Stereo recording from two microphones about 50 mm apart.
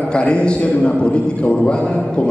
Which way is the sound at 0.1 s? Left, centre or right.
Left.